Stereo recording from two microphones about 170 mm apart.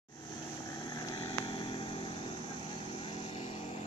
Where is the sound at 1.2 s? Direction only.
30° left (ahead or behind).